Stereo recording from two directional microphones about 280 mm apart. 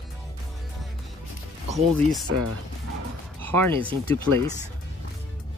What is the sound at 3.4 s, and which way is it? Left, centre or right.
Speech, centre.